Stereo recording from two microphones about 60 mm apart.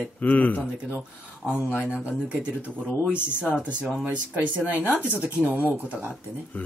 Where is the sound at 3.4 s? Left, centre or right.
Left.